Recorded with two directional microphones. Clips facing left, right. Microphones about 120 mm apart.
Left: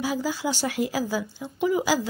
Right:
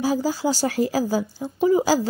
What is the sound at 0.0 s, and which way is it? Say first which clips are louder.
A woman's voice: right 5 dB; 40° right (ahead or behind).